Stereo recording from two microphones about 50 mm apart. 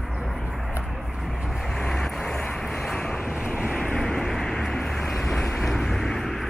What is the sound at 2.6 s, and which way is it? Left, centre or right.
Vehicle, centre.